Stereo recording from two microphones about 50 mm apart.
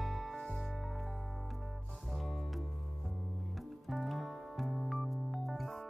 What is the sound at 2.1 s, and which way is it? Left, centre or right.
Music, centre.